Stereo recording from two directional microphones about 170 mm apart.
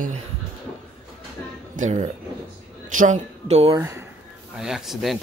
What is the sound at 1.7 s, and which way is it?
A man's voice, 45° right (ahead or behind).